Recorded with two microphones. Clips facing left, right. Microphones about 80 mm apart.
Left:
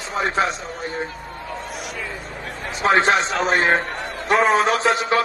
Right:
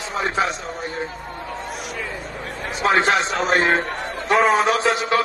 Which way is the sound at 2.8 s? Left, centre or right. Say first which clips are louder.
Left 1 dB; left.